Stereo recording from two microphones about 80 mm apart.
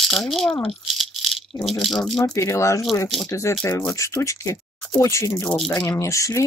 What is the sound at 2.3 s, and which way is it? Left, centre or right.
Speech, left.